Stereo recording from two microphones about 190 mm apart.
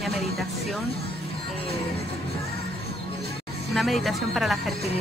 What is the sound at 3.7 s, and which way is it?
Speech, centre (ahead or behind).